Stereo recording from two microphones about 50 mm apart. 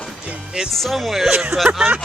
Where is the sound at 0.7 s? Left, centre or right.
Centre.